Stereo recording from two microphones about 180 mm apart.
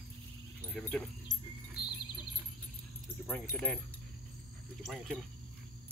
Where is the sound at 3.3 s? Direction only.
10° left (ahead or behind).